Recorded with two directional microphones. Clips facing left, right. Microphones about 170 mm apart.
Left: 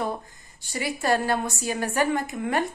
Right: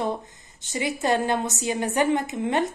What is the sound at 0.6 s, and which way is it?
A woman's voice, 20° right (ahead or behind).